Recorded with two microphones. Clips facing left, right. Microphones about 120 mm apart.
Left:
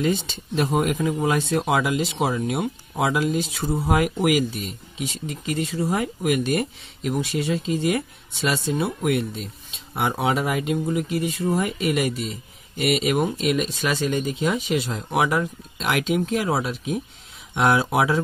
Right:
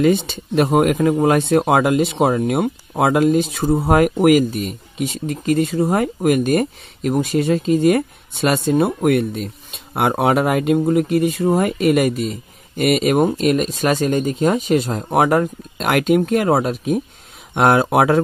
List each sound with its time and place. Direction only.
0.0 s speech: 60° right (ahead or behind)